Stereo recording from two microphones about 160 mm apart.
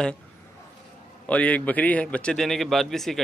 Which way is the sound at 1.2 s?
10° left (ahead or behind).